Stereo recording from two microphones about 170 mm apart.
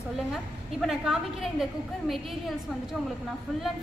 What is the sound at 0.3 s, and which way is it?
A woman's voice, centre (ahead or behind).